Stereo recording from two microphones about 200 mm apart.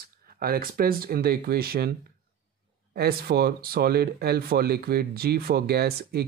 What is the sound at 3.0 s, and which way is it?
Speech, 50° right (ahead or behind).